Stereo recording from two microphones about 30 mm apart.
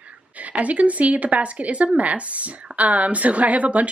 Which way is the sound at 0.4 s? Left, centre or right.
Right.